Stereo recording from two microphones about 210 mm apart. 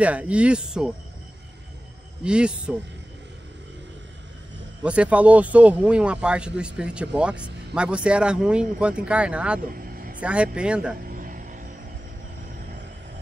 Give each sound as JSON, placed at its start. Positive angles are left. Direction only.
{"t": 0.0, "sound": "speech", "side_deg": -5}
{"t": 2.2, "sound": "speech", "side_deg": -5}
{"t": 4.8, "sound": "speech", "side_deg": -5}
{"t": 9.7, "sound": "vehicle", "side_deg": -45}
{"t": 10.2, "sound": "speech", "side_deg": -5}
{"t": 11.1, "sound": "music", "side_deg": -40}